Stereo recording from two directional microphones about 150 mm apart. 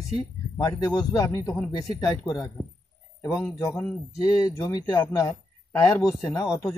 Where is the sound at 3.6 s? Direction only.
20° left (ahead or behind).